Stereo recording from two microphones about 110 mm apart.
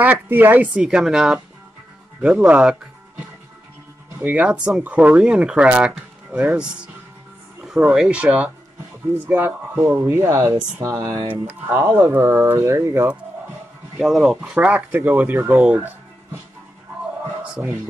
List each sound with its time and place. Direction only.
0.0 s speech: 15° right (ahead or behind)
0.8 s speech: 5° right (ahead or behind)
4.2 s speech: 10° right (ahead or behind); by 11.1 s 30° right (ahead or behind)
11.1 s speech: 20° right (ahead or behind)
13.9 s speech: 5° right (ahead or behind)